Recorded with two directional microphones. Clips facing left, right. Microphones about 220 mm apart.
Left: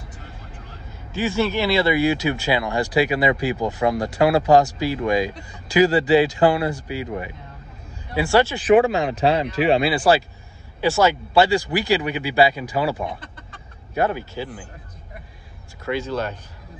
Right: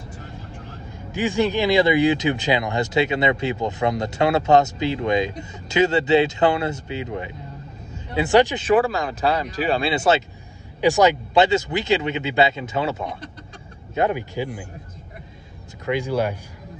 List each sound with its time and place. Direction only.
1.1 s speech: 15° right (ahead or behind)
8.6 s speech: 35° right (ahead or behind)
13.9 s speech: 15° right (ahead or behind)
15.8 s speech: 15° right (ahead or behind)